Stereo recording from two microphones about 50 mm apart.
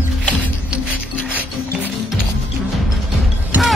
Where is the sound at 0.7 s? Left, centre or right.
Right.